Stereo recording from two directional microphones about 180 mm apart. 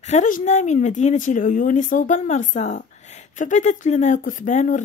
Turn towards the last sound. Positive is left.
turn(degrees=45)  # may be behind; listen again after turning